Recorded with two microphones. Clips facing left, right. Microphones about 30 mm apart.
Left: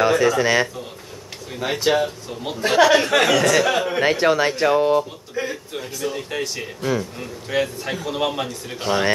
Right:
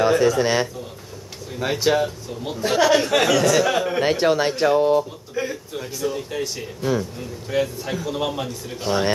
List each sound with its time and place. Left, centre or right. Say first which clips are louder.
0.0 s a man's voice: even; left
1.9 s a man's voice: left 1 dB; centre
4.6 s speech: even; centre
5.3 s a sound: even; centre
6.0 s a man's voice: even; left